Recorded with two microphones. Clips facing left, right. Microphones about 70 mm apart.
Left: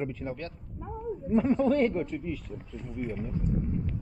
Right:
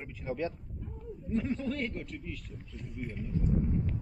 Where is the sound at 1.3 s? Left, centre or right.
Centre.